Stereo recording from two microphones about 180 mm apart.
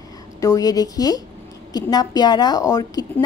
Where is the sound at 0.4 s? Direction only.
20° left (ahead or behind).